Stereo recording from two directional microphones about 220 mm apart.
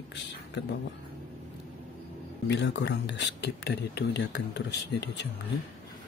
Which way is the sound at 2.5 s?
50° left (ahead or behind).